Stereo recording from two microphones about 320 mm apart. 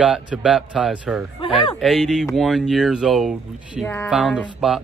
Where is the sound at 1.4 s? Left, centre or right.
Centre.